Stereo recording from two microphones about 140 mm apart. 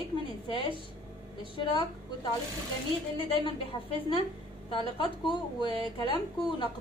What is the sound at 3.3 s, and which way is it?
Speech, 40° left (ahead or behind).